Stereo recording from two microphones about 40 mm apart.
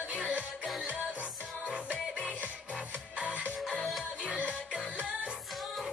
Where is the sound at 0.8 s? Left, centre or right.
Right.